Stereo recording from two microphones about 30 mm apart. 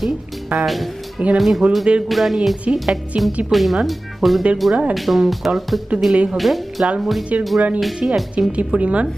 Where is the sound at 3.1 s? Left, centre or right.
Right.